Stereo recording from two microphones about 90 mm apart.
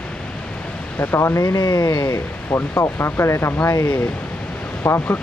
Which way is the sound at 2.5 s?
25° left (ahead or behind).